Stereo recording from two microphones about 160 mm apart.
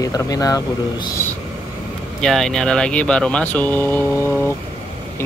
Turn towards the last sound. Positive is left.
turn(degrees=15)  # may be behind; listen again after turning